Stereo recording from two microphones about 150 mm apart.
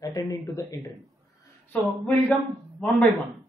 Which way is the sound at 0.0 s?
20° left (ahead or behind).